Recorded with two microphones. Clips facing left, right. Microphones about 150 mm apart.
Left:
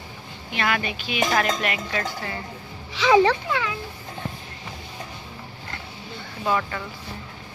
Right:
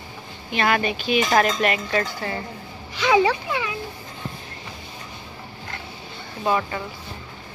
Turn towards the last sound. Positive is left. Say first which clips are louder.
# right 2 dB
turn(degrees=-20)  # may be behind; listen again after turning